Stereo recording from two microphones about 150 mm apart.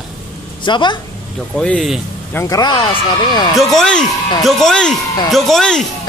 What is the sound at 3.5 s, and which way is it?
Speech, 5° left (ahead or behind).